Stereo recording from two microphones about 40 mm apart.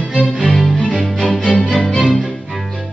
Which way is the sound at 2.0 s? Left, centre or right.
Centre.